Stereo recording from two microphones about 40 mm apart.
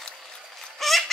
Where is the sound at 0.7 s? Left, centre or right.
Centre.